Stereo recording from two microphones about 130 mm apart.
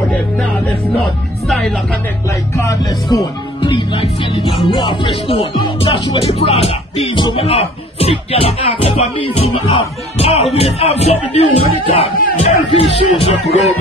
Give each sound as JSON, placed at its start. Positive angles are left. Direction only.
{"t": 2.5, "sound": "speech", "side_deg": 25}
{"t": 3.7, "sound": "speech", "side_deg": 40}
{"t": 13.2, "sound": "music", "side_deg": 55}